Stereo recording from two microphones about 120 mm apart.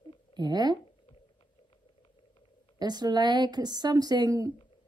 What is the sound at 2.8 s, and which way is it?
A woman's voice, 35° right (ahead or behind).